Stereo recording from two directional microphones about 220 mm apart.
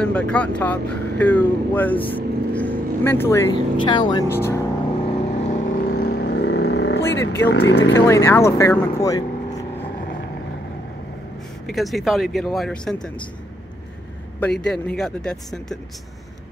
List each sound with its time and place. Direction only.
0.0 s speech: 5° left (ahead or behind)
5.5 s vehicle: 40° left (ahead or behind); by 7.0 s 55° left (ahead or behind)
7.0 s vehicle: 10° left (ahead or behind)
7.4 s speech: 45° left (ahead or behind)
7.9 s speech: 10° left (ahead or behind)
11.6 s speech: centre (ahead or behind)
14.4 s speech: 5° left (ahead or behind)